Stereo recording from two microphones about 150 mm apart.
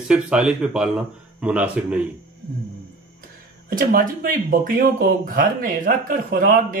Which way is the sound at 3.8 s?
70° right (ahead or behind).